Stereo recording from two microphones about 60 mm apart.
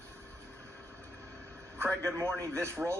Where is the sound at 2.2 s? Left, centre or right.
Right.